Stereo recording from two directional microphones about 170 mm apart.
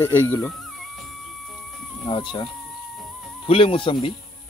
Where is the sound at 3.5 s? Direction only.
30° left (ahead or behind).